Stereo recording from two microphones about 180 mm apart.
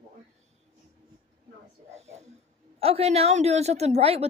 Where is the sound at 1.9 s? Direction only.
40° right (ahead or behind).